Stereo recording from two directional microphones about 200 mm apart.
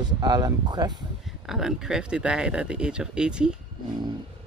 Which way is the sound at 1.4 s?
Centre (ahead or behind).